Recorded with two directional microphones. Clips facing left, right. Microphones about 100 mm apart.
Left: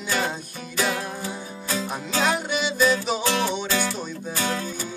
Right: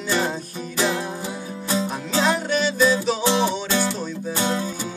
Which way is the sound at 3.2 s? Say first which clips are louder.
Right 3 dB; 25° right (ahead or behind).